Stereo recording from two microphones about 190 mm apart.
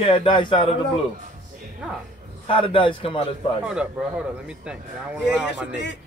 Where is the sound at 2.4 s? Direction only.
25° left (ahead or behind).